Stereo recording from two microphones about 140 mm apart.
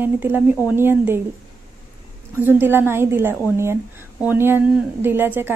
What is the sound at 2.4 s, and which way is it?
A woman's voice, 15° right (ahead or behind).